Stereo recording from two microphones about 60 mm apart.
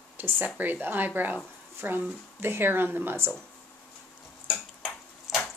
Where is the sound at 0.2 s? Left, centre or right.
Right.